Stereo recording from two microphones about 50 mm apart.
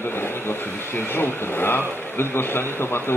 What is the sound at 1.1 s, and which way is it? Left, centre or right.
A man's voice, left.